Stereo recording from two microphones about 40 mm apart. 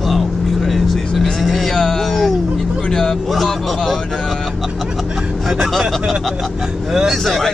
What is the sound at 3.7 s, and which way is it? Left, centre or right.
Vehicle, centre.